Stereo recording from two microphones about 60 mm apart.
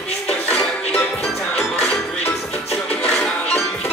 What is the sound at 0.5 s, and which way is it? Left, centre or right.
Music, centre.